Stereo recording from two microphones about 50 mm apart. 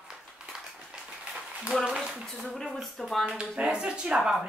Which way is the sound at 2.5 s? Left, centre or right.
Centre.